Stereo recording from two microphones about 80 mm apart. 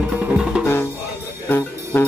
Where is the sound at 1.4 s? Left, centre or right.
Left.